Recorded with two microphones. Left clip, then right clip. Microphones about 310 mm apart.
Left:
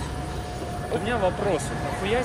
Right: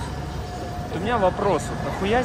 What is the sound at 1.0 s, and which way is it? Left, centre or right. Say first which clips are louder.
Speech: right 5 dB; right.